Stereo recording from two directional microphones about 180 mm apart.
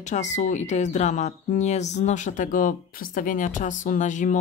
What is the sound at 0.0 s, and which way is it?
Speech, 40° left (ahead or behind).